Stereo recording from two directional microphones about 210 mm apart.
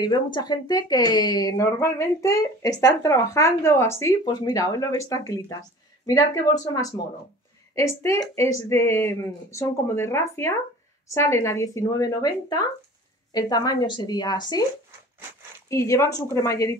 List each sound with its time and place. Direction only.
0.0 s speech: 20° left (ahead or behind)
15.7 s speech: 15° left (ahead or behind)